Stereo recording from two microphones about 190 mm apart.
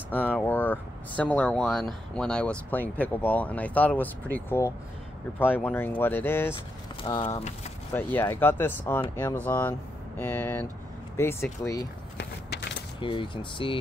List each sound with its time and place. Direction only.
0.1 s speech: 10° left (ahead or behind)
7.0 s speech: 30° left (ahead or behind)
7.9 s speech: 10° left (ahead or behind)
12.2 s a sound: 65° left (ahead or behind)
13.0 s speech: 25° left (ahead or behind)